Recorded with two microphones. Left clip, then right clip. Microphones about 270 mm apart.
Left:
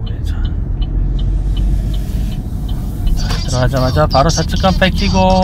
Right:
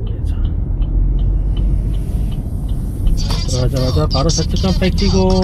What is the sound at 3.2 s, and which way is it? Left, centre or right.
Speech, centre.